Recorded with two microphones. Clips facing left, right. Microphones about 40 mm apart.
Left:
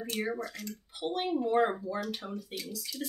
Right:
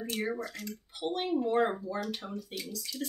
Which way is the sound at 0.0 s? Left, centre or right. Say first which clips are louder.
Even; centre.